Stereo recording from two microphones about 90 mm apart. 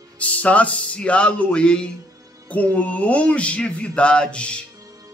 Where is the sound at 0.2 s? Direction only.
15° left (ahead or behind).